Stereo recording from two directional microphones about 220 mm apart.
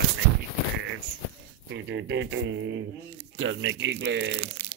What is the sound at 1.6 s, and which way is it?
Speech, 55° right (ahead or behind).